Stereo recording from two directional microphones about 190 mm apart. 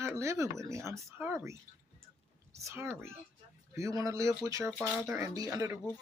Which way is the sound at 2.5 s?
15° right (ahead or behind).